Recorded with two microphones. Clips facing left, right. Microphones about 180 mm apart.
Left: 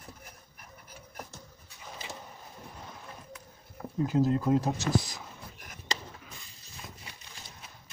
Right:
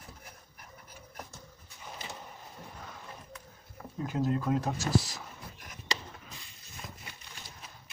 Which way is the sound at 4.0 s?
30° left (ahead or behind).